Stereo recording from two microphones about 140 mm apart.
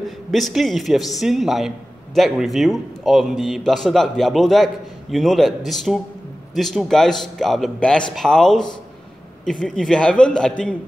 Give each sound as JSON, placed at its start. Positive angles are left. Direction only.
{"t": 0.3, "sound": "a man's voice", "side_deg": 0}